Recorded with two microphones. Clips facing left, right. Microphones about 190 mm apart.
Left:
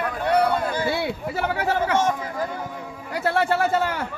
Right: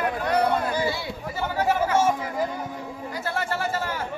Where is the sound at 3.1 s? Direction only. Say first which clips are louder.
Left 8 dB; 65° left (ahead or behind).